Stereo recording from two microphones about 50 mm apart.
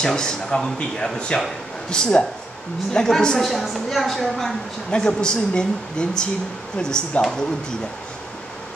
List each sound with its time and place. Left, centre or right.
0.0 s speech: centre
3.4 s a woman's voice: centre
4.9 s speech: centre